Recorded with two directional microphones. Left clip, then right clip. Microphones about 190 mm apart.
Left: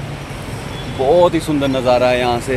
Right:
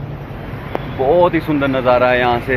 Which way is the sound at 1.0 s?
20° left (ahead or behind).